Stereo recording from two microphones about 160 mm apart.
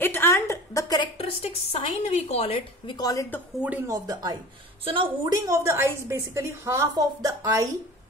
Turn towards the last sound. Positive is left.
turn(degrees=-20)  # may be behind; listen again after turning